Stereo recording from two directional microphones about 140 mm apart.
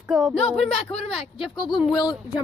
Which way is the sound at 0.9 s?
45° left (ahead or behind).